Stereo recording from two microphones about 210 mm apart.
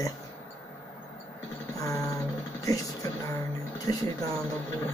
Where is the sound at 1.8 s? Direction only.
15° left (ahead or behind).